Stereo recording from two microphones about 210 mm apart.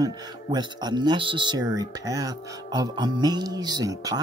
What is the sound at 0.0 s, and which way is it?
Speech, 20° right (ahead or behind).